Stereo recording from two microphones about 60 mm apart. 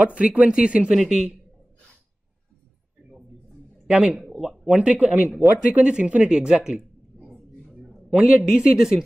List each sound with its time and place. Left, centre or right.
0.0 s speech: right
0.9 s speech: centre
3.8 s speech: centre
4.2 s a sound: centre
4.5 s speech: centre
7.2 s a sound: centre
7.7 s a woman's voice: centre